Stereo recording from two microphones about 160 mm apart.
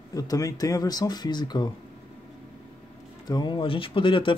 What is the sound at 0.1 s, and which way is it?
Speech, 20° left (ahead or behind).